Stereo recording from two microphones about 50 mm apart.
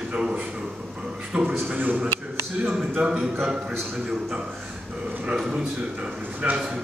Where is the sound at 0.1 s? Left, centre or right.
Centre.